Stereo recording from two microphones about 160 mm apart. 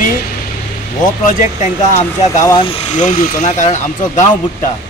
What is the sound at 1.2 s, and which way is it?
Speech, 55° left (ahead or behind).